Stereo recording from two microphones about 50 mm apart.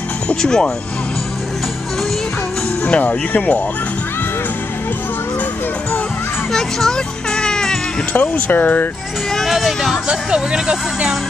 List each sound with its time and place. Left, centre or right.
0.4 s speech: centre
2.9 s speech: left
6.5 s music: centre
8.1 s speech: left
9.5 s speech: centre
10.0 s speech: centre